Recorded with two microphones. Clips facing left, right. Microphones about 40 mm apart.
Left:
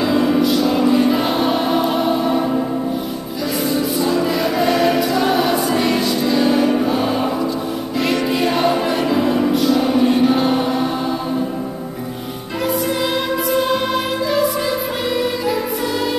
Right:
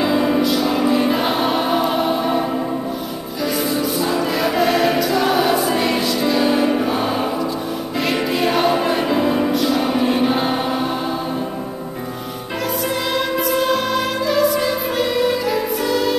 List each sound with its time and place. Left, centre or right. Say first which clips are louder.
0.0 s music: left 1 dB; centre
3.7 s music: left 2 dB; centre
13.1 s music: left 1 dB; centre